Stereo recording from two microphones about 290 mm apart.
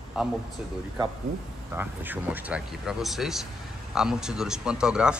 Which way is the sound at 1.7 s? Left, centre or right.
Centre.